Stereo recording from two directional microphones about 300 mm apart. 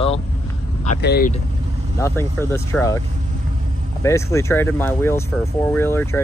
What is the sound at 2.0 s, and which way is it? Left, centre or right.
Speech, centre.